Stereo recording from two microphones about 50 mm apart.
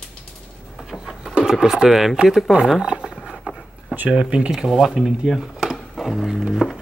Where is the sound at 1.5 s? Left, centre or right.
Centre.